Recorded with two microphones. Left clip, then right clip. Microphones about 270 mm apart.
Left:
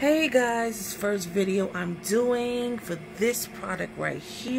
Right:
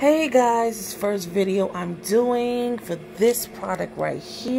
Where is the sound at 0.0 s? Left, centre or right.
Centre.